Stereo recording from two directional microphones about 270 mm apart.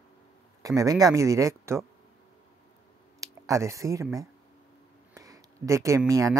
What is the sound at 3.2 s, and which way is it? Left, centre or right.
Speech, centre.